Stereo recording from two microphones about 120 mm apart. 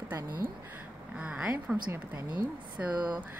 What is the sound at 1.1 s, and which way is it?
Speech, 10° right (ahead or behind).